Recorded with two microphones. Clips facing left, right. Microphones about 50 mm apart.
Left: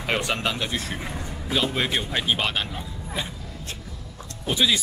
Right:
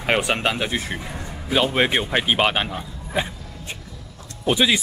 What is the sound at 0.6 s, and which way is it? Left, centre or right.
Speech, centre.